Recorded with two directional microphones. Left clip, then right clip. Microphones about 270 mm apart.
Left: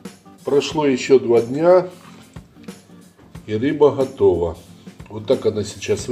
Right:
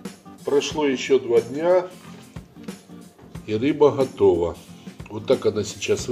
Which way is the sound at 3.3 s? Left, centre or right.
Centre.